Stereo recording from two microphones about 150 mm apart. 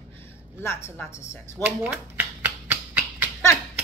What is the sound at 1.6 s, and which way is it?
Shuffling cards, 15° right (ahead or behind).